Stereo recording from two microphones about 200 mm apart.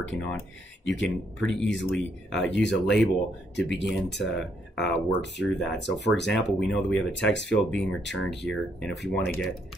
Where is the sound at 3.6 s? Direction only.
60° left (ahead or behind).